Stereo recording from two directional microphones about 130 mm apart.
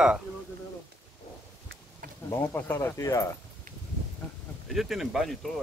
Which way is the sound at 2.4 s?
20° left (ahead or behind).